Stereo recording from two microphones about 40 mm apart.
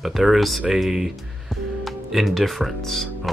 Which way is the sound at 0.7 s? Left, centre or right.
Centre.